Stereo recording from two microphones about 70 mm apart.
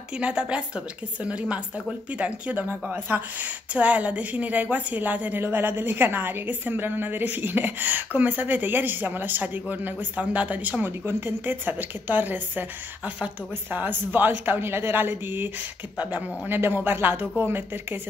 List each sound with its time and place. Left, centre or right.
0.2 s a woman's voice: centre; by 17.6 s right